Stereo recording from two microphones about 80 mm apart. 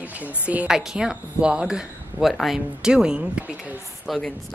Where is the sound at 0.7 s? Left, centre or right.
Centre.